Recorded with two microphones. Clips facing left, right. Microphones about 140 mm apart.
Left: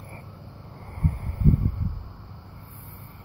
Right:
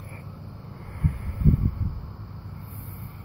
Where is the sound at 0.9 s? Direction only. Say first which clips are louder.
Left 1 dB; 35° left (ahead or behind).